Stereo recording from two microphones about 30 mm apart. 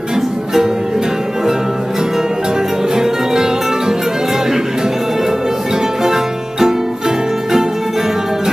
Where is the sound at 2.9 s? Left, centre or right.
Centre.